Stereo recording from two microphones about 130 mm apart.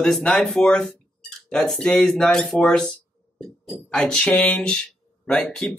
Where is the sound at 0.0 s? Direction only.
5° left (ahead or behind).